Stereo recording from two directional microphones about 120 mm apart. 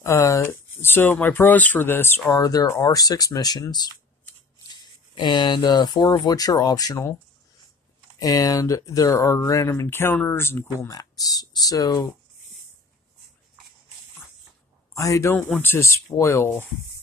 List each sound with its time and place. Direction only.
0.0 s speech: 25° left (ahead or behind)
5.1 s speech: 40° left (ahead or behind)
8.2 s speech: 30° left (ahead or behind)
15.0 s speech: 25° left (ahead or behind)